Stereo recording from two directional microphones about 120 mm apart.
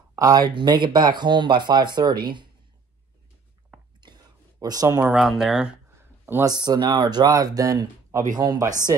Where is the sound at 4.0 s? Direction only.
35° right (ahead or behind).